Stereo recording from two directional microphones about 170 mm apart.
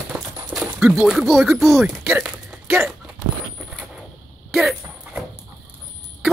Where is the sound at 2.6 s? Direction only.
15° right (ahead or behind).